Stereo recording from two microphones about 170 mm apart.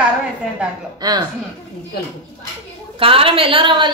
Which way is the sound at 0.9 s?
25° right (ahead or behind).